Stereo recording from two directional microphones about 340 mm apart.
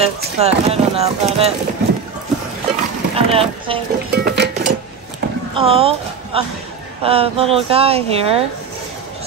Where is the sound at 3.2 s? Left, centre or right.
Centre.